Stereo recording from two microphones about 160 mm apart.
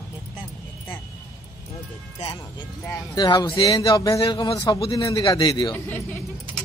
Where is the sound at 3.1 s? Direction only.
25° left (ahead or behind).